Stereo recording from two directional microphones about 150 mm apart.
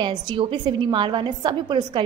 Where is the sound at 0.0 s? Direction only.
30° right (ahead or behind).